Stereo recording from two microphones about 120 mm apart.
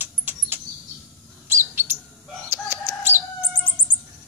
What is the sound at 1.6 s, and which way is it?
Bird, 20° right (ahead or behind).